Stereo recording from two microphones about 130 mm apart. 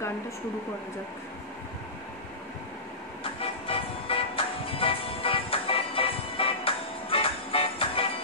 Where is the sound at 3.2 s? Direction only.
45° left (ahead or behind).